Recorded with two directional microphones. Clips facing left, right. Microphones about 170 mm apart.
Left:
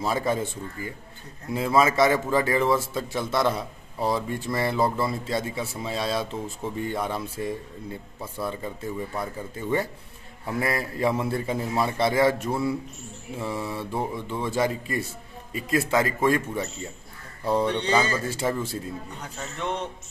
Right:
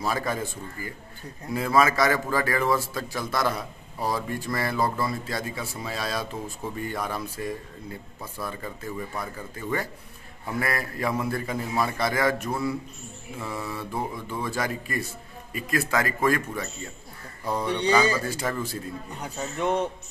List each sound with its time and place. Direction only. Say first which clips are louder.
0.0 s a man's voice: left 3 dB; 25° left (ahead or behind)
17.6 s speech: right 1 dB; 10° right (ahead or behind)
18.3 s a man's voice: left 2 dB; 25° left (ahead or behind)
19.2 s speech: right 5 dB; 10° right (ahead or behind)